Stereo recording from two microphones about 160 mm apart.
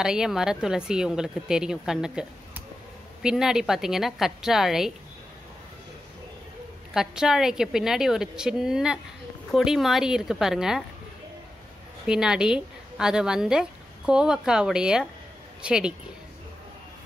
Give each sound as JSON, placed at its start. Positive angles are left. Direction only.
{"t": 0.0, "sound": "a woman's voice", "side_deg": -5}
{"t": 6.9, "sound": "a woman's voice", "side_deg": -5}
{"t": 12.1, "sound": "a woman's voice", "side_deg": -5}